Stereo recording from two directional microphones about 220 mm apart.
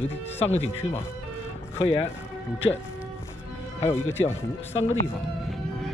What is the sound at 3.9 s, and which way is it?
Speech, 10° left (ahead or behind).